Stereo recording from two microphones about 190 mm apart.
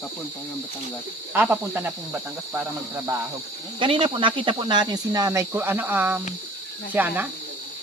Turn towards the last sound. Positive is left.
turn(degrees=-10)  # may be behind; listen again after turning